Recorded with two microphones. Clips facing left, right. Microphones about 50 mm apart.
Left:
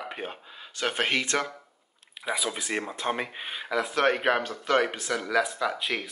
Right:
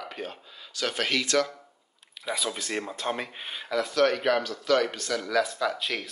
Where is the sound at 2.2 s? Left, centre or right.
Centre.